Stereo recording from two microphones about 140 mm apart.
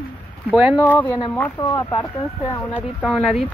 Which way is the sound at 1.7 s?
25° left (ahead or behind).